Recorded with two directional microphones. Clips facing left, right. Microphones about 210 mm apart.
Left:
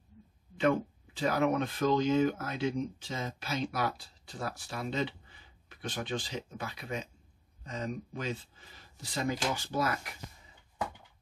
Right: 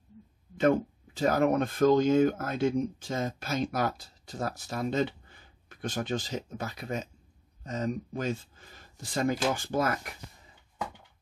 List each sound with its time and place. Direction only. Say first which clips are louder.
0.6 s speech: right 4 dB; 45° right (ahead or behind)